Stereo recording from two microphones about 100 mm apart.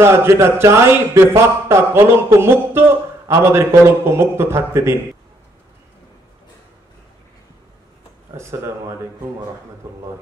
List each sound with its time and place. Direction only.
0.0 s a man's voice: 25° right (ahead or behind)
8.4 s a man's voice: 30° right (ahead or behind)